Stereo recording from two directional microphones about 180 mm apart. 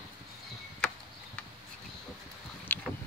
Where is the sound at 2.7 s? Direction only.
10° left (ahead or behind).